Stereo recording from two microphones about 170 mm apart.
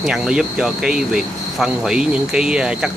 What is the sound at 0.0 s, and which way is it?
Speech, 5° right (ahead or behind).